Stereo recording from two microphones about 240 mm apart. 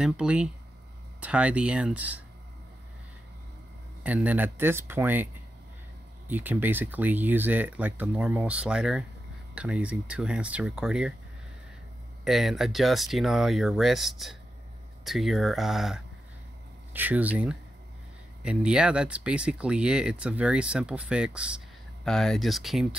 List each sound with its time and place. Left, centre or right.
0.0 s speech: centre
4.0 s speech: centre
12.3 s speech: centre